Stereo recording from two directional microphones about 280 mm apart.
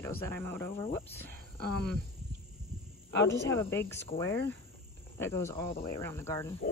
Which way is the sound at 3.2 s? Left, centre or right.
Centre.